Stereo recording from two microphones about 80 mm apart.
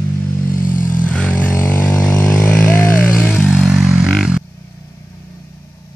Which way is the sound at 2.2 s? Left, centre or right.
Left.